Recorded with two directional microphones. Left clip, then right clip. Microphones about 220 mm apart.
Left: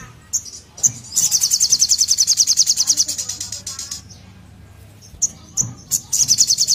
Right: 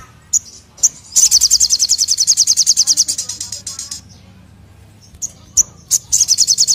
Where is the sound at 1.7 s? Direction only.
Centre (ahead or behind).